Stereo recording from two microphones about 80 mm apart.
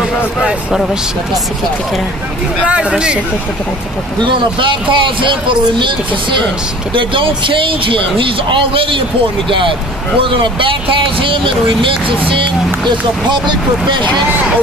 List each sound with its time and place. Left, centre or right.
0.4 s speech: centre
2.6 s speech: centre
4.2 s speech: right